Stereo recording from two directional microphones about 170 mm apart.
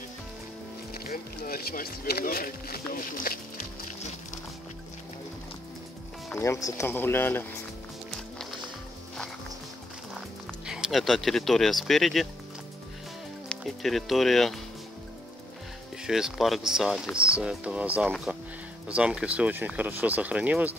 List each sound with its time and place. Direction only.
0.9 s speech: 60° left (ahead or behind)
6.3 s speech: 15° left (ahead or behind)
10.7 s speech: centre (ahead or behind)
13.5 s speech: centre (ahead or behind)
16.0 s speech: 5° right (ahead or behind)